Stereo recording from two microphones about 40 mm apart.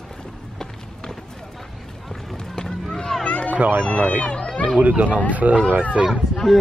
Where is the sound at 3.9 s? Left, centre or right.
Left.